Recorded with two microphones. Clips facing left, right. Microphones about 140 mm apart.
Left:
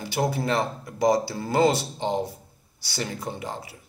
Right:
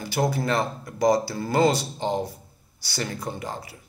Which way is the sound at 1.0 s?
10° left (ahead or behind).